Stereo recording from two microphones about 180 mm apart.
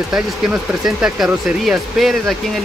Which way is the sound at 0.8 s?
5° right (ahead or behind).